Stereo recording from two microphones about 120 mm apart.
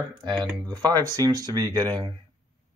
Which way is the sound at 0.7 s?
35° right (ahead or behind).